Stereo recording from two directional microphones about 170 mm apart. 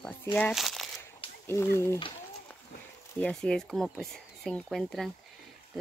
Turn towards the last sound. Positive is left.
turn(degrees=0)  # may be behind; listen again after turning